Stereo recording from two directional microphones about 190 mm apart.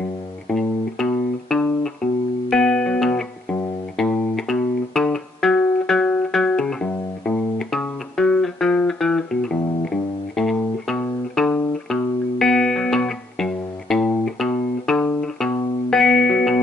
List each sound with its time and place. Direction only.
0.5 s music: 5° left (ahead or behind)